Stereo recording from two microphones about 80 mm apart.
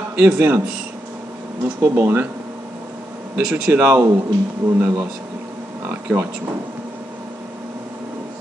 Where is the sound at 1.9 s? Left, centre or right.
Right.